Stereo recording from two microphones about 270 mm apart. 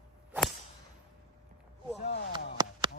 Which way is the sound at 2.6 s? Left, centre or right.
Centre.